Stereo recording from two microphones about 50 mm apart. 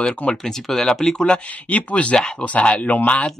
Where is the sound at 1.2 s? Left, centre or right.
Left.